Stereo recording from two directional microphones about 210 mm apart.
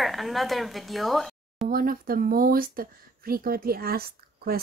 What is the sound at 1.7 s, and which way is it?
Speech, 45° right (ahead or behind).